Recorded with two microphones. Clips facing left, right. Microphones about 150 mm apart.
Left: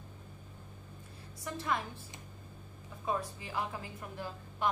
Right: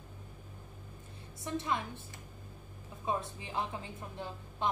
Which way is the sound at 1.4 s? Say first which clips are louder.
Right 1 dB; 20° right (ahead or behind).